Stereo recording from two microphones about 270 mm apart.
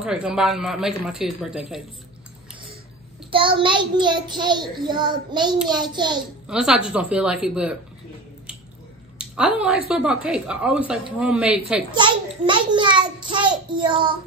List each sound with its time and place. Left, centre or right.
0.0 s speech: centre
3.3 s a child's voice: centre
6.4 s speech: centre
9.2 s speech: centre
11.9 s a child's voice: centre